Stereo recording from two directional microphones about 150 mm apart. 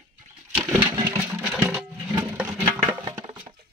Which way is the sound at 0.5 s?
10° right (ahead or behind).